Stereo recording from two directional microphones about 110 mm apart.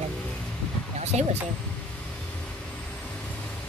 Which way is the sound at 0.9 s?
90° right.